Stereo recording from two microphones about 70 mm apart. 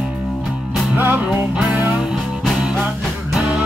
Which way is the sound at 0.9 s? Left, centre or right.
Right.